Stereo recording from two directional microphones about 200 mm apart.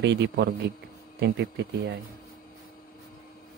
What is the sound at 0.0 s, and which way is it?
A man's voice, 60° right (ahead or behind).